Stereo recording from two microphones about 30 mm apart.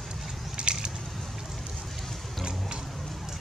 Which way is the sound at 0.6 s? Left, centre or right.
Right.